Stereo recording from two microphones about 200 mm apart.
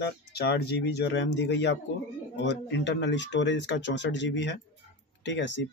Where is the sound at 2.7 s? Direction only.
65° left (ahead or behind).